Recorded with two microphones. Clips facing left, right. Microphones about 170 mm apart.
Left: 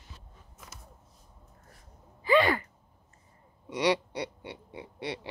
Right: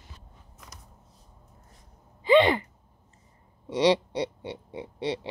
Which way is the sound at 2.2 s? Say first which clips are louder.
Right 4 dB; 20° right (ahead or behind).